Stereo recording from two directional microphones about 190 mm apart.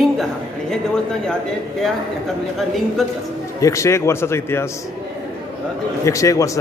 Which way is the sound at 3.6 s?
15° left (ahead or behind).